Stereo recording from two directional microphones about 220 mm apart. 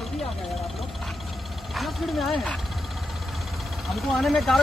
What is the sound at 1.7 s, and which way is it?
Speech, centre (ahead or behind).